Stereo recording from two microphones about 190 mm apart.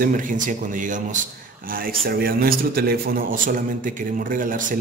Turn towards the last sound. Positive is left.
turn(degrees=-45)  # may be behind; listen again after turning